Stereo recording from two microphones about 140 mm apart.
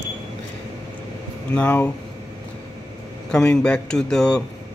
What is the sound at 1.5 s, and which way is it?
Speech, 10° left (ahead or behind).